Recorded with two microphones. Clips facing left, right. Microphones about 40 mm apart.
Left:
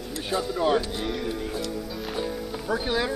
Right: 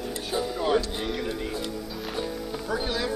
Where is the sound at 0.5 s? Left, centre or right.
Centre.